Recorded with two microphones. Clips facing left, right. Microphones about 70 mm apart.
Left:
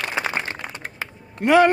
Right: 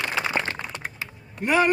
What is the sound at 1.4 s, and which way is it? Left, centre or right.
Speech, left.